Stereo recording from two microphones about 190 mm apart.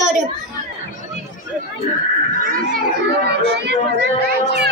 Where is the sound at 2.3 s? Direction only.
45° right (ahead or behind).